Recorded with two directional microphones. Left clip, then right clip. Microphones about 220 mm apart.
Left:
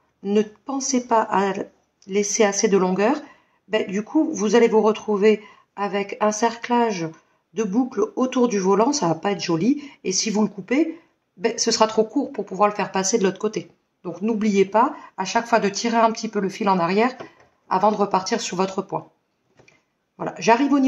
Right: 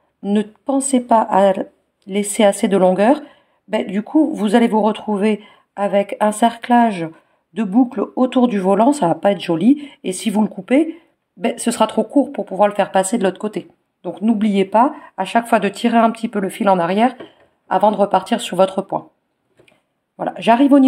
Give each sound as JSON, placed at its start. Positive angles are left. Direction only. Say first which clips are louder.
{"t": 0.2, "sound": "speech", "louder": "even", "side_deg": -50}
{"t": 20.2, "sound": "speech", "louder": "right 4 dB", "side_deg": -45}